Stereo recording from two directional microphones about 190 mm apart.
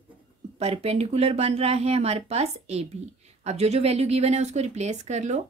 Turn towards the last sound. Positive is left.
turn(degrees=-35)  # may be behind; listen again after turning